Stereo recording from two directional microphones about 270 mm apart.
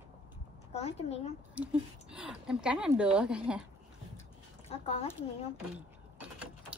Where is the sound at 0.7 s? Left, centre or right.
Left.